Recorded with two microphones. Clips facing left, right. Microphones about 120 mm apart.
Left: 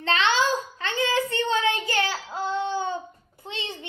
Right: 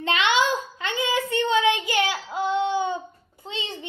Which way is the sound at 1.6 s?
15° right (ahead or behind).